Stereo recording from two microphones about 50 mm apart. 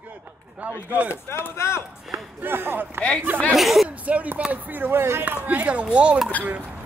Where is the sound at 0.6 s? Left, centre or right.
Right.